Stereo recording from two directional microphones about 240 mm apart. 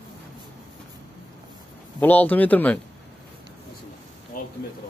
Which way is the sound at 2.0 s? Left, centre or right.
Centre.